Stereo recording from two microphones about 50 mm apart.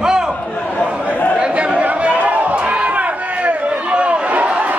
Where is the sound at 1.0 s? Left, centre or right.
Left.